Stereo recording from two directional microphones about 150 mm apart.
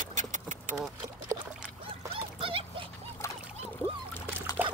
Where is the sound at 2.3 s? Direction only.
35° right (ahead or behind).